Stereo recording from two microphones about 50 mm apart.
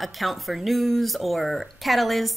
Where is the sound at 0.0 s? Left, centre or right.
Centre.